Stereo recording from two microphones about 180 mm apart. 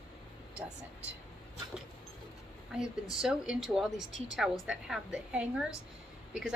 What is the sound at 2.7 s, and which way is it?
Speech, 5° right (ahead or behind).